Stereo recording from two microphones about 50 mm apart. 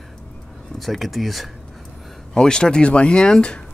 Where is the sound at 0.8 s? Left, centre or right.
Centre.